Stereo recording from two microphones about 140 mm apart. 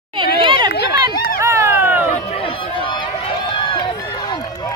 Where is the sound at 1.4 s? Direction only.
20° right (ahead or behind).